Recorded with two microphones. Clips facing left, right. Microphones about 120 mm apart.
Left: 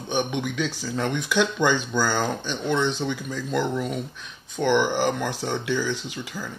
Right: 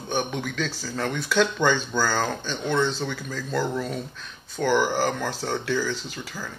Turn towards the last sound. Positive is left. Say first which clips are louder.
# left 2 dB
turn(degrees=15)  # may be behind; listen again after turning